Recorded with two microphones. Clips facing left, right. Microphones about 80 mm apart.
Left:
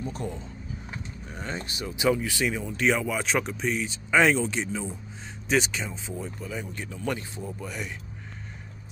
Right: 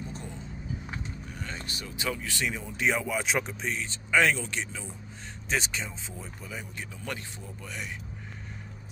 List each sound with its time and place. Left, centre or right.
1.3 s speech: left; by 3.9 s centre
4.1 s speech: centre
5.5 s speech: centre